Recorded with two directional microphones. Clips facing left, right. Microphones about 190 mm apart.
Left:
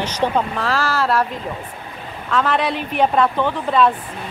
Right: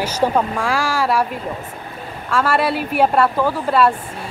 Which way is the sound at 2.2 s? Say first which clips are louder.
Right 1 dB; 10° right (ahead or behind).